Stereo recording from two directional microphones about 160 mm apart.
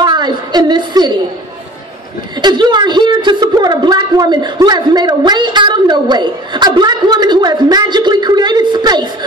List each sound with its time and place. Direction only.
0.0 s a woman's voice: 25° right (ahead or behind)
2.4 s a woman's voice: 25° right (ahead or behind)